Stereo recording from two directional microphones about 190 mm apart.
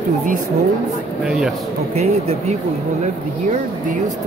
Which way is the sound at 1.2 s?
5° right (ahead or behind).